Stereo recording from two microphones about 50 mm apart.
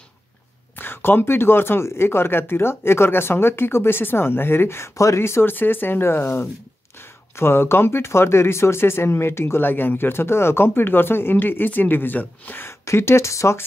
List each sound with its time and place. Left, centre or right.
0.7 s speech: left
5.4 s speech: left
12.6 s speech: left